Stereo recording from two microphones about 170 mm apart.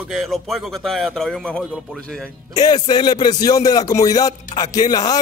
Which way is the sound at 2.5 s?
25° left (ahead or behind).